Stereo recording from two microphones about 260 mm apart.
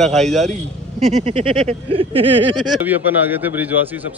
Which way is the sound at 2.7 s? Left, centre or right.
Centre.